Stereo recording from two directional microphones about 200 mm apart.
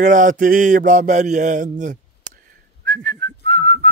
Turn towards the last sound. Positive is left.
turn(degrees=-40)  # may be behind; listen again after turning